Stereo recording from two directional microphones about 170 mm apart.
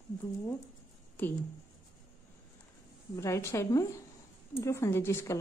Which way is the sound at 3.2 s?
15° left (ahead or behind).